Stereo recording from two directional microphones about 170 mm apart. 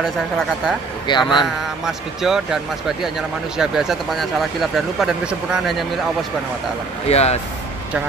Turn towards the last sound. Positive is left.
turn(degrees=40)  # may be behind; listen again after turning